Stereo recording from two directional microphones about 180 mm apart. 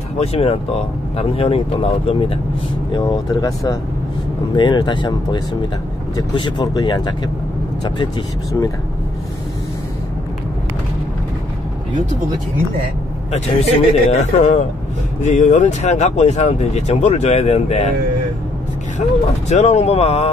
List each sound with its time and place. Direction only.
0.2 s speech: 35° left (ahead or behind)
2.9 s speech: 20° left (ahead or behind)
13.3 s speech: 35° left (ahead or behind)
18.9 s speech: 40° left (ahead or behind)